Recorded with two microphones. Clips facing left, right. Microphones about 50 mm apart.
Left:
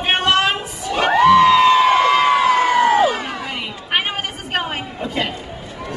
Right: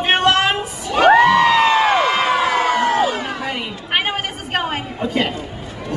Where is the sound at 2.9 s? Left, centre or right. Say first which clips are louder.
Left 2 dB; centre.